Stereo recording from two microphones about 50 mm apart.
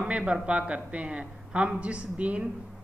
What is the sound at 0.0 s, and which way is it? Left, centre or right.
A woman's voice, right.